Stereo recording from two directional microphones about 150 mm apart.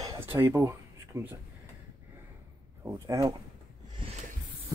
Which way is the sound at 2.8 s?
20° right (ahead or behind).